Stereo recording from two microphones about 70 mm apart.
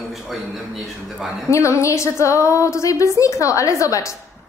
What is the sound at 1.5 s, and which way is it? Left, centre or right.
A woman's voice, left.